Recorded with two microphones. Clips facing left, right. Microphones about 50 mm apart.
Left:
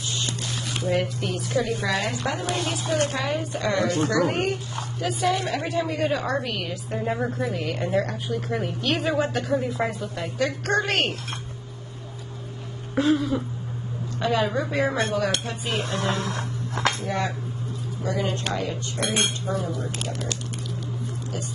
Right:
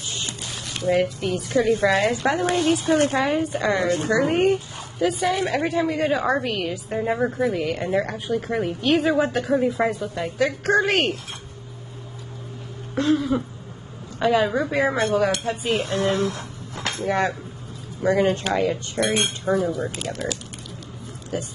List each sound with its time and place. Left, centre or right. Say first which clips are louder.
0.8 s a woman's voice: right 5 dB; centre
1.8 s speech: right 6 dB; right
2.7 s a woman's voice: right 5 dB; right; by 11.1 s centre
12.9 s a sound: right 1 dB; centre
14.2 s a woman's voice: right 4 dB; centre
15.4 s speech: right 5 dB; right
17.0 s speech: right 5 dB; right
19.0 s cutlery: right 5 dB; right
19.5 s speech: right 6 dB; right
20.0 s a sound: right 3 dB; centre